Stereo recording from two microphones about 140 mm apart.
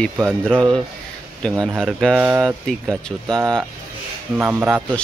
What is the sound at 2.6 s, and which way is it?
Speech, 5° left (ahead or behind).